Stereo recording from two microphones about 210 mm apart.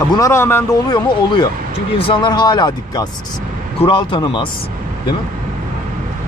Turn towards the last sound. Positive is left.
turn(degrees=20)  # may be behind; listen again after turning